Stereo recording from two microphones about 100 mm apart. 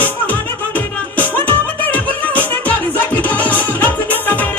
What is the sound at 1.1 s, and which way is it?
Music, 15° left (ahead or behind).